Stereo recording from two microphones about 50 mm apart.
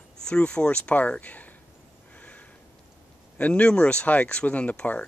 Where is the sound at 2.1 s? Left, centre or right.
Left.